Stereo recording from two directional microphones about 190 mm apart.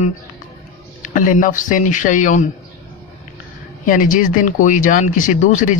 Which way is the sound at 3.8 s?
45° left (ahead or behind).